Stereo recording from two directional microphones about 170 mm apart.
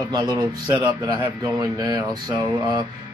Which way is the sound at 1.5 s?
20° right (ahead or behind).